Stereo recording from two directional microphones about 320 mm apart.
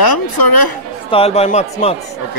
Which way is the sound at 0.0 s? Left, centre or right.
Left.